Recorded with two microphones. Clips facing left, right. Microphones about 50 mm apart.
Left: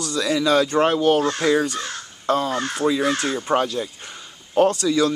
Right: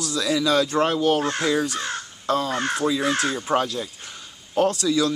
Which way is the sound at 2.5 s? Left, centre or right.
Right.